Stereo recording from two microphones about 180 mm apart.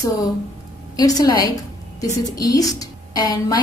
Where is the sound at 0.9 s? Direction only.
20° left (ahead or behind).